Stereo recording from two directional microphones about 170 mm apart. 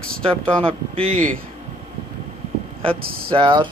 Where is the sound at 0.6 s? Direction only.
35° right (ahead or behind).